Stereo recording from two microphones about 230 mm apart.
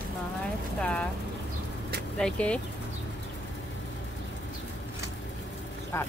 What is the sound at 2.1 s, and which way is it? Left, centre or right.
Speech, centre.